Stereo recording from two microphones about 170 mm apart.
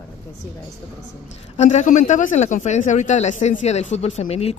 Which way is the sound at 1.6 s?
45° left (ahead or behind).